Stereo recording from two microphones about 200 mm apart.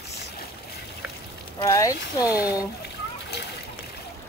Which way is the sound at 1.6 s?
15° left (ahead or behind).